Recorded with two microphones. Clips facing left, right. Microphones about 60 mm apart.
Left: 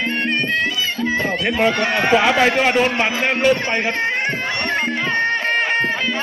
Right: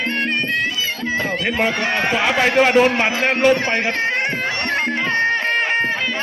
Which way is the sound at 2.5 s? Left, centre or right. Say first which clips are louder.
Right 3 dB; right.